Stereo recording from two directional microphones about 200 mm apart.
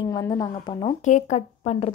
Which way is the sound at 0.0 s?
20° left (ahead or behind).